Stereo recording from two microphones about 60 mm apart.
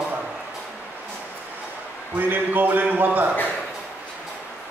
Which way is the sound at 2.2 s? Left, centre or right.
Right.